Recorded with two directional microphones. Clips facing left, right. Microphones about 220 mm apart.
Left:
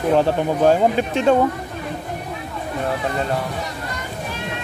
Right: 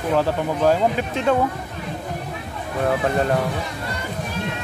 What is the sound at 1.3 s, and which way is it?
Speech, 25° left (ahead or behind).